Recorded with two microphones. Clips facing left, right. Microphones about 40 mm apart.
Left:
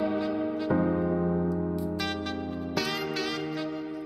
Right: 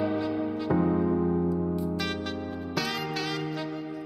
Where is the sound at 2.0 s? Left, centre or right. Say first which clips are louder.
Even; centre.